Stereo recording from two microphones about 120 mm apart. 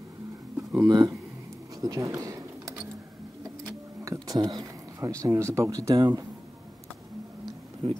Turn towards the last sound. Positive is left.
turn(degrees=-55)  # may be behind; listen again after turning